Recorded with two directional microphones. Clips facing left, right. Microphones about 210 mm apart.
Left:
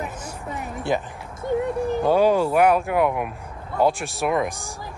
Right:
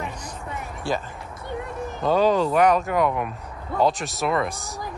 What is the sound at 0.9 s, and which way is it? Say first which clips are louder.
Speech: left 3 dB; 20° left (ahead or behind).